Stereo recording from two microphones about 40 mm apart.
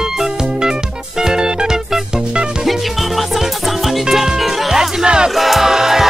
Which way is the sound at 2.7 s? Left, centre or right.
Centre.